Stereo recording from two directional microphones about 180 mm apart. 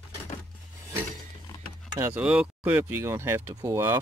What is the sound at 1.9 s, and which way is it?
Speech, 15° right (ahead or behind).